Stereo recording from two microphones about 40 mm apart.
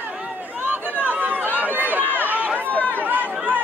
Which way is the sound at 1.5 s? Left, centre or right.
Right.